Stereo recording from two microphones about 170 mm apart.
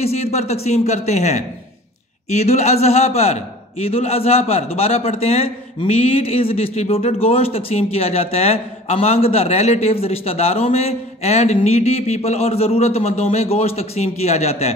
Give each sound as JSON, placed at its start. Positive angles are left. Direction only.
{"t": 0.0, "sound": "a man's voice", "side_deg": 40}